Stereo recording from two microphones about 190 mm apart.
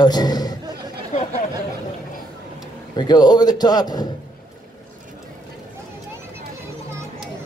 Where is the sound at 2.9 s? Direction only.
20° left (ahead or behind).